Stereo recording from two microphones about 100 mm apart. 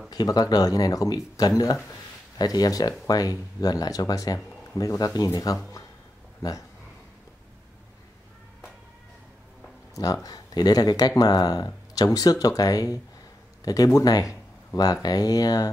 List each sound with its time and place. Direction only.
0.1 s speech: 40° left (ahead or behind)
9.9 s speech: 35° left (ahead or behind)